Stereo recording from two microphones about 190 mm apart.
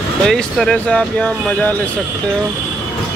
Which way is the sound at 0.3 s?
5° left (ahead or behind).